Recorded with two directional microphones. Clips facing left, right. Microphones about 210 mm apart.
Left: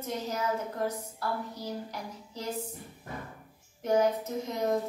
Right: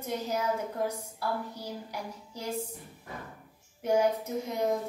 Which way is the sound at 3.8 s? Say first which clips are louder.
Even; 10° right (ahead or behind).